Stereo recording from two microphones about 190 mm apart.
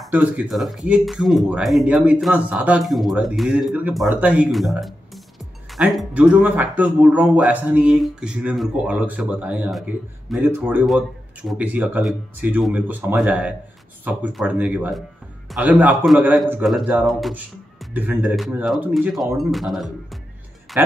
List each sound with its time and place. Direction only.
0.0 s speech: 5° right (ahead or behind)